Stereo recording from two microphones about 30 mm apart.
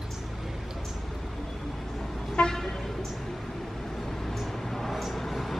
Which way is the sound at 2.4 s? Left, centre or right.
Left.